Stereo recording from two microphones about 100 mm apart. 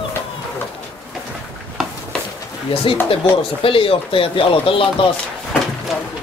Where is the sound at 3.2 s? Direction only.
70° left (ahead or behind).